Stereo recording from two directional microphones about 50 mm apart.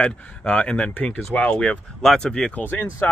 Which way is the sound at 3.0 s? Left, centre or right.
Left.